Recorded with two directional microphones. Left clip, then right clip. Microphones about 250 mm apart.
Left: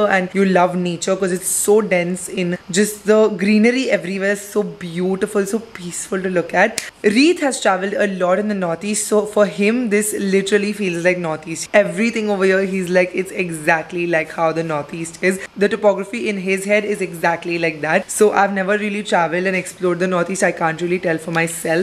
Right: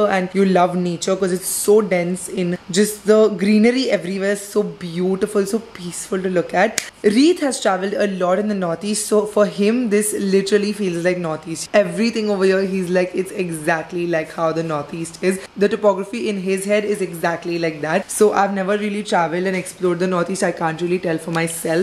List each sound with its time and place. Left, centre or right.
0.0 s a man's voice: centre